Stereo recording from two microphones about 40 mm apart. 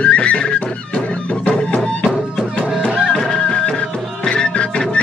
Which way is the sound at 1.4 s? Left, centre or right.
Left.